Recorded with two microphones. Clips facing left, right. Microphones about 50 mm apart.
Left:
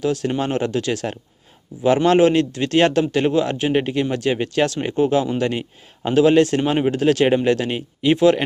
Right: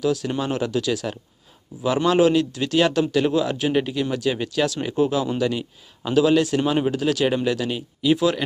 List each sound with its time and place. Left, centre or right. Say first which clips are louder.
0.0 s speech: left 2 dB; left
6.6 s speech: left 2 dB; left
6.9 s speech: left 5 dB; left